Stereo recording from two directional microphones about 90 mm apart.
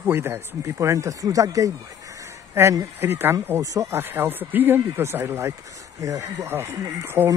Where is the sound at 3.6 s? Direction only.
35° right (ahead or behind).